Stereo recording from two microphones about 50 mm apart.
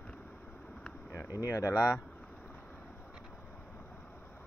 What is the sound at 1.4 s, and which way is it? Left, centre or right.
Speech, left.